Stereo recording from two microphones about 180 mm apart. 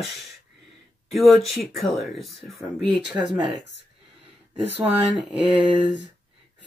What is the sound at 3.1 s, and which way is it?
Speech, 25° right (ahead or behind).